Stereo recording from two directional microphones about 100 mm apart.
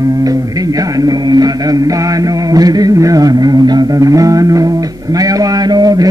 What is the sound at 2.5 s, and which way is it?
Music, 40° right (ahead or behind).